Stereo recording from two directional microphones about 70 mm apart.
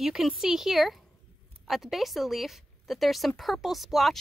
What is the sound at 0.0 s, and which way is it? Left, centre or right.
A woman's voice, centre.